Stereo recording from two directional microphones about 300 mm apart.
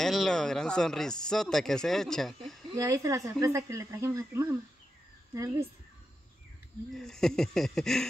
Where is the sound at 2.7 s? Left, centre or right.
Centre.